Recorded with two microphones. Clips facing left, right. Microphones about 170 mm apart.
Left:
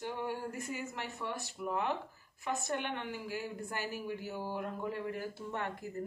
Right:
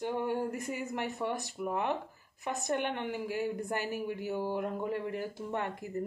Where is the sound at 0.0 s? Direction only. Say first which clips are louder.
Right 6 dB; 50° right (ahead or behind).